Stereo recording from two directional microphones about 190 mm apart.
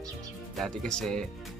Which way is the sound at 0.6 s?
5° left (ahead or behind).